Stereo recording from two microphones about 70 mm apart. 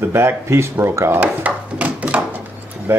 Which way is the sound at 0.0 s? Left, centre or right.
Right.